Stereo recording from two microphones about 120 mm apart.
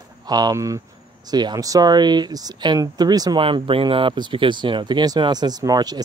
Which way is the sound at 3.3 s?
45° right (ahead or behind).